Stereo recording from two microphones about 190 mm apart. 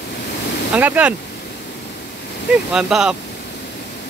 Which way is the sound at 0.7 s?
5° right (ahead or behind).